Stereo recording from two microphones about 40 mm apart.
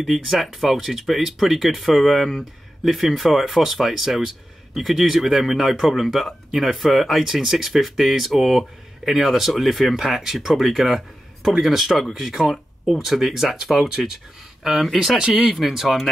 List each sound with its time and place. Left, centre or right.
0.1 s speech: centre